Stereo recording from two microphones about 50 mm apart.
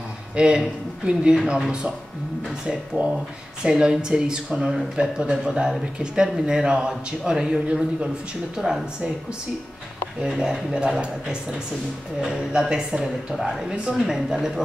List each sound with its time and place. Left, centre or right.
0.4 s speech: centre
3.0 s speech: right
3.6 s speech: centre
10.2 s speech: centre